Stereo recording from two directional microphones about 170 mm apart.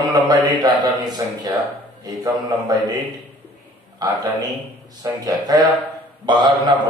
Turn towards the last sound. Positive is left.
turn(degrees=-25)  # may be behind; listen again after turning